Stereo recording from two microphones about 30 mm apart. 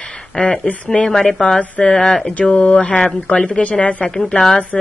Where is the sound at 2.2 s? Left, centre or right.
Left.